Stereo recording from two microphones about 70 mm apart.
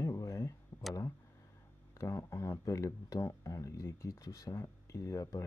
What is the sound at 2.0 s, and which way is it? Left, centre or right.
Speech, left.